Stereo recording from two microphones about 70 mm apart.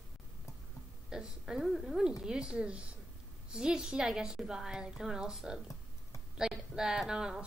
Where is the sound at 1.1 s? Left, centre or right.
Centre.